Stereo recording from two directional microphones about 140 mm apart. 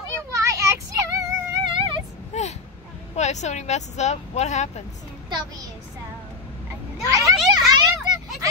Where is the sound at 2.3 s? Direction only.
55° left (ahead or behind).